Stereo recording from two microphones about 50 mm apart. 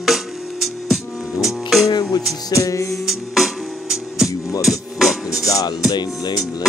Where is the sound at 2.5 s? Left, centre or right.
Left.